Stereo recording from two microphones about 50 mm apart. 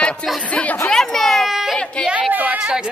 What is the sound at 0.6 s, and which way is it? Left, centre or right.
Chatter, left.